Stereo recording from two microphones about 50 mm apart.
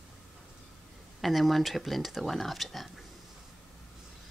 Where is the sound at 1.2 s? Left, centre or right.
Centre.